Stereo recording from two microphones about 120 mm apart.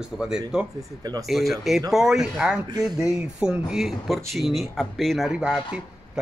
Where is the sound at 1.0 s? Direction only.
35° right (ahead or behind).